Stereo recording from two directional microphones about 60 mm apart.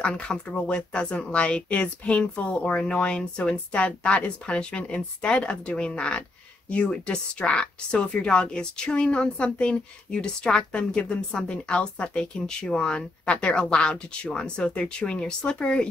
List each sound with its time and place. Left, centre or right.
0.0 s speech: centre